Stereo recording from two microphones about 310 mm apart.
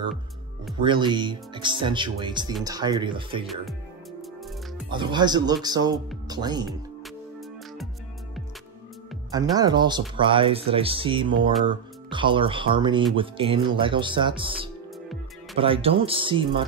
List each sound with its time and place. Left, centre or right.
0.7 s speech: centre
4.8 s speech: centre
9.3 s speech: centre